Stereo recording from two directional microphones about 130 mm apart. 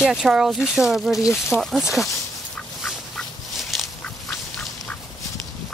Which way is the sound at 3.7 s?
Centre (ahead or behind).